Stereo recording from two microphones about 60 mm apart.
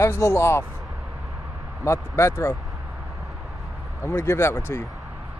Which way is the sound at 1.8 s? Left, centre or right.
Left.